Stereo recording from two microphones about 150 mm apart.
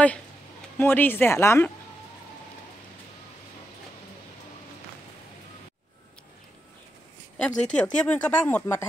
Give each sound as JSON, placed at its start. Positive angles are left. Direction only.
{"t": 0.7, "sound": "speech", "side_deg": 15}
{"t": 7.3, "sound": "speech", "side_deg": 5}